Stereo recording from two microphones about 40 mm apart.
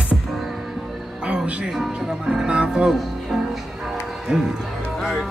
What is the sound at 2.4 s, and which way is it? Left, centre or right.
Music, right.